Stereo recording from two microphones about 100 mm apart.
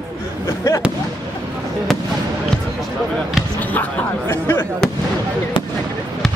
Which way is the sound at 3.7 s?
20° left (ahead or behind).